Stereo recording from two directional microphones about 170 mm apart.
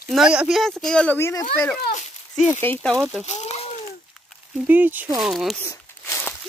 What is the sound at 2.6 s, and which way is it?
Speech, 10° left (ahead or behind).